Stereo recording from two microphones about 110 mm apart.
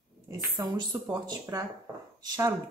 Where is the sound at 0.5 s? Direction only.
45° right (ahead or behind).